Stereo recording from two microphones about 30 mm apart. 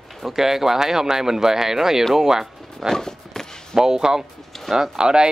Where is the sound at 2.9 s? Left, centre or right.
Centre.